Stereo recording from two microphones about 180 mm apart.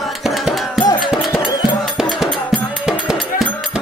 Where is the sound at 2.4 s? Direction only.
5° left (ahead or behind).